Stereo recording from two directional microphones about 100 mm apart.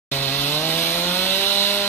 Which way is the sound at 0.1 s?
20° left (ahead or behind).